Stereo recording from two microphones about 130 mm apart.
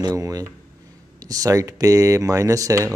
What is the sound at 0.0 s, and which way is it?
Speech, 25° right (ahead or behind).